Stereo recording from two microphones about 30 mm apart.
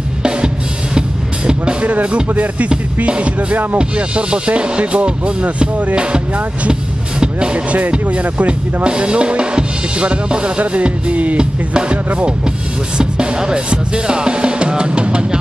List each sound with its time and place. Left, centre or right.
1.8 s music: right
3.1 s music: right
3.7 s speech: right
6.7 s music: right
7.5 s music: right
8.8 s drum: right
10.6 s music: right
11.3 s speech: right